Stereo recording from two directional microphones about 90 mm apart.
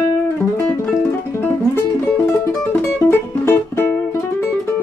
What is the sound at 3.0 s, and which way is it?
Music, 25° left (ahead or behind).